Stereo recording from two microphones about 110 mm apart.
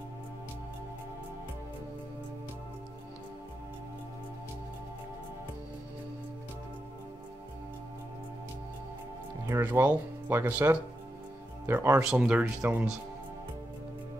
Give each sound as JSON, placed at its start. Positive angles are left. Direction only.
{"t": 9.5, "sound": "speech", "side_deg": -20}
{"t": 12.0, "sound": "speech", "side_deg": -10}